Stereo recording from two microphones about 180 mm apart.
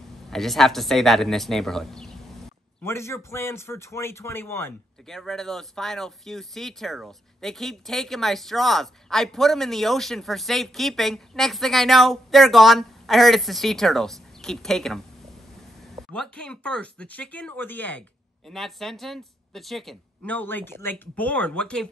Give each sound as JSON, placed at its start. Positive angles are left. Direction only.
{"t": 0.3, "sound": "speech", "side_deg": 0}
{"t": 2.8, "sound": "speech", "side_deg": 15}
{"t": 5.0, "sound": "speech", "side_deg": 0}
{"t": 16.1, "sound": "speech", "side_deg": 5}